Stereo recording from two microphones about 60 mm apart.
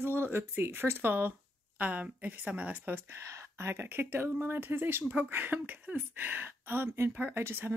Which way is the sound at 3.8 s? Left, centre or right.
Right.